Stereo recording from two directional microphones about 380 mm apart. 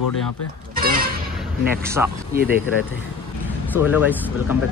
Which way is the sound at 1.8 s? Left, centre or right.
Centre.